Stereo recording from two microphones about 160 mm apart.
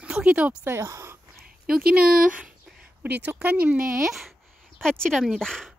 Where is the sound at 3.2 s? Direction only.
10° right (ahead or behind).